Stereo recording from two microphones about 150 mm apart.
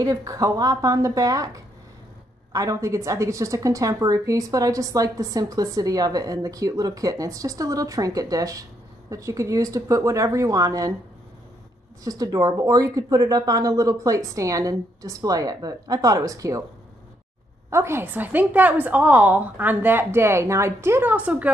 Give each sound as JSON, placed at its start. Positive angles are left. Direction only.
{"t": 0.0, "sound": "a woman's voice", "side_deg": -20}
{"t": 12.0, "sound": "a woman's voice", "side_deg": -25}
{"t": 17.6, "sound": "a woman's voice", "side_deg": -20}